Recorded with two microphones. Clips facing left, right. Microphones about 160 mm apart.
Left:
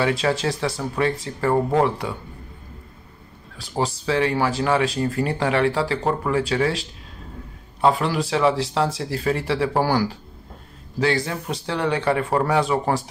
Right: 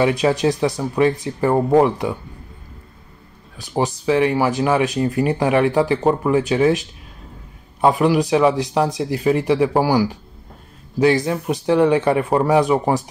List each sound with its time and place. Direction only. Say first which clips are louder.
0.0 s speech: right 5 dB; 20° right (ahead or behind)
3.5 s speech: right 4 dB; 20° right (ahead or behind)